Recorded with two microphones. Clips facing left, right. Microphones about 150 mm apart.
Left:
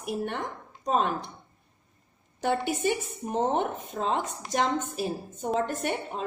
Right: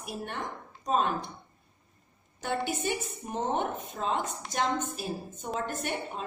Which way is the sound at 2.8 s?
60° left (ahead or behind).